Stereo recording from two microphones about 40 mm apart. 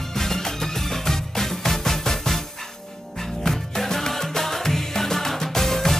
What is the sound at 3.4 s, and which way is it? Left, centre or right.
Music, centre.